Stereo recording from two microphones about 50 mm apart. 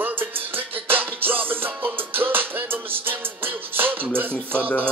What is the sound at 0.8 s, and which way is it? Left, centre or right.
Music, right.